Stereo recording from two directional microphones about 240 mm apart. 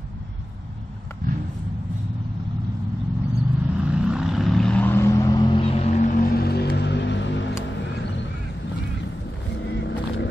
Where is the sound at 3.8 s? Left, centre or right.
Centre; by 7.4 s left.